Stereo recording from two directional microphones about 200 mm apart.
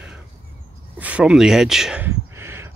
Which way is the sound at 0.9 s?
5° right (ahead or behind).